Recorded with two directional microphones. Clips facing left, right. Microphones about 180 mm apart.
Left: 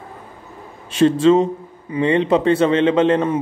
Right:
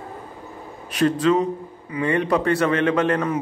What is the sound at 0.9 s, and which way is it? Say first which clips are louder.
A man's voice: left 5 dB; 25° left (ahead or behind).